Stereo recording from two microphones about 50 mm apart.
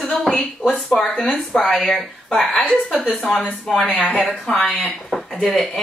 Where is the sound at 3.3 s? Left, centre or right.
Left.